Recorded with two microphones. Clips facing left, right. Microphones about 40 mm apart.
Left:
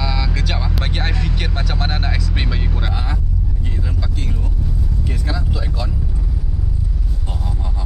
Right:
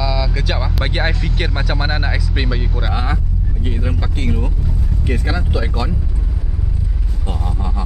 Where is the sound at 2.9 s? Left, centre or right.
Right.